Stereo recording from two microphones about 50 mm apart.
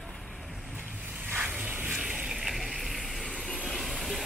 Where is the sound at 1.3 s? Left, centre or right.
Right.